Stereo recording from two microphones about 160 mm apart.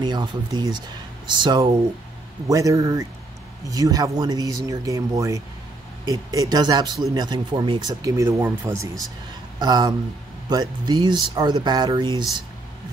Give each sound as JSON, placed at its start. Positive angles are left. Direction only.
{"t": 0.0, "sound": "speech", "side_deg": -25}